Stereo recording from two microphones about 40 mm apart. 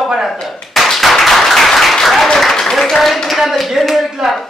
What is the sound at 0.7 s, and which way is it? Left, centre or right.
Clapping, centre.